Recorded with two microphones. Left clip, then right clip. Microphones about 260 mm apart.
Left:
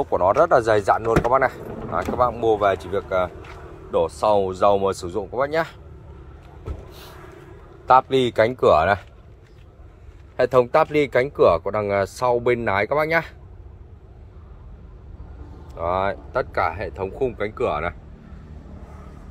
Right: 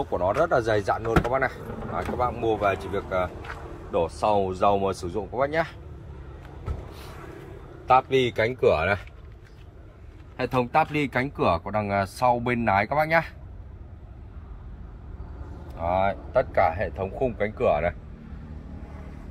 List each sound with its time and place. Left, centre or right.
0.1 s speech: centre
7.8 s speech: centre
10.3 s speech: centre
15.7 s speech: centre